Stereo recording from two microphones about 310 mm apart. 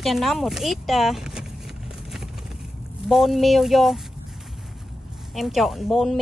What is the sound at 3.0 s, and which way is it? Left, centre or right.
Speech, centre.